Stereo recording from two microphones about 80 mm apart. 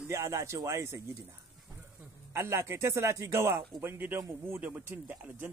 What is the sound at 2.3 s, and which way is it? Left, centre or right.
Speech, right.